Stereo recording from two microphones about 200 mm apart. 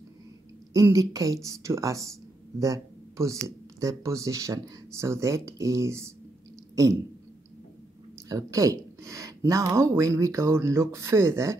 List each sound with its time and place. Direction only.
0.7 s speech: 15° right (ahead or behind)
6.7 s a sound: 15° right (ahead or behind)
8.3 s speech: 15° right (ahead or behind)